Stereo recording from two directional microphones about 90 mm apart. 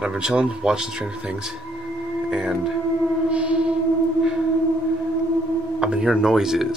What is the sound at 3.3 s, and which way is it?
Siren, 10° right (ahead or behind).